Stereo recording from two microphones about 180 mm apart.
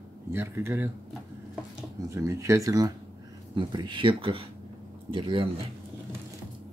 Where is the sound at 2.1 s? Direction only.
15° right (ahead or behind).